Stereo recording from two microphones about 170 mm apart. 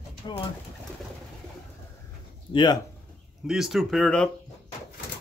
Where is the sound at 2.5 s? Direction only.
25° left (ahead or behind).